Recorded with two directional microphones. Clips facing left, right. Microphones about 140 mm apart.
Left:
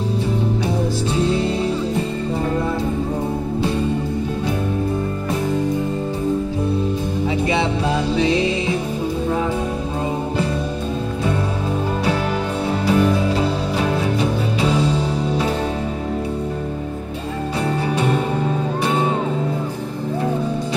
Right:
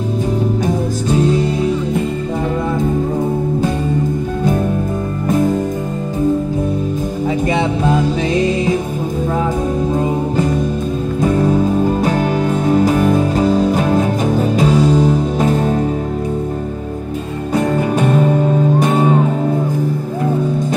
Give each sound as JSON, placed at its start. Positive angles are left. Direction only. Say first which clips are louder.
{"t": 7.4, "sound": "music", "louder": "right 5 dB", "side_deg": -45}
{"t": 12.0, "sound": "music", "louder": "right 5 dB", "side_deg": -45}
{"t": 17.7, "sound": "music", "louder": "right 4 dB", "side_deg": -45}